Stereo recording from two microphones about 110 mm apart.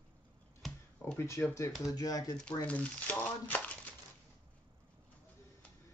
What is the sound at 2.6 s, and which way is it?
Speech, 10° left (ahead or behind).